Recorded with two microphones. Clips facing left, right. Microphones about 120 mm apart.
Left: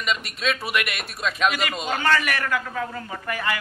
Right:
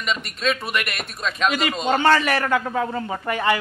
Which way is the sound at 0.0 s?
Centre (ahead or behind).